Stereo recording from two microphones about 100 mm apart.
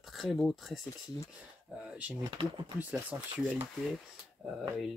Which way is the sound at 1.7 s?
10° right (ahead or behind).